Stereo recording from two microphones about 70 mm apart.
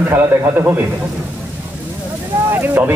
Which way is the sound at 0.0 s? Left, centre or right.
Right.